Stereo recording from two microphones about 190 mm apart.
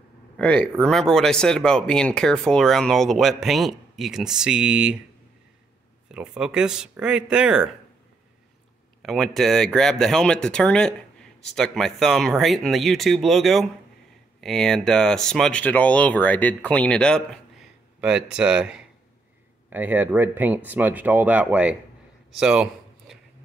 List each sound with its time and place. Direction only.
0.4 s speech: 5° left (ahead or behind)
6.1 s speech: 5° right (ahead or behind)
9.0 s speech: centre (ahead or behind)
22.4 s a sound: 5° right (ahead or behind)